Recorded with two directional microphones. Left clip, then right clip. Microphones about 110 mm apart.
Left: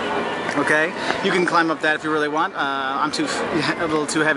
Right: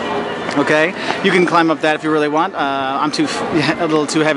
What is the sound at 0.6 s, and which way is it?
Speech, 25° right (ahead or behind).